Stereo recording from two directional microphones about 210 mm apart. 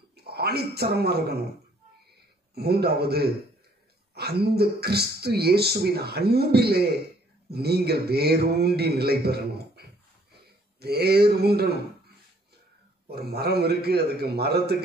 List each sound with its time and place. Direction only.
0.1 s a man's voice: 50° right (ahead or behind)
2.5 s speech: 50° right (ahead or behind)
13.1 s speech: 50° right (ahead or behind)